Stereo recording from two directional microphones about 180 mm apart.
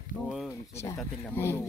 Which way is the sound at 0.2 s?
Centre (ahead or behind).